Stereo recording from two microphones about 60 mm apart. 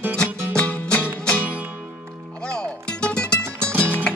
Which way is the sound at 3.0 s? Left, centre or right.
Centre.